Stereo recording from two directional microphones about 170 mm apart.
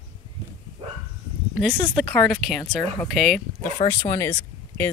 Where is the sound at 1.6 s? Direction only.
5° right (ahead or behind).